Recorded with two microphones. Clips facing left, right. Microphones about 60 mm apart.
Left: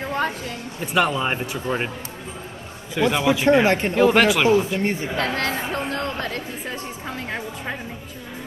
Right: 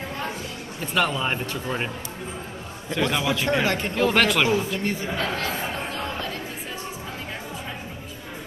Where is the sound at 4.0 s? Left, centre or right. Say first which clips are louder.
Left 3 dB; centre.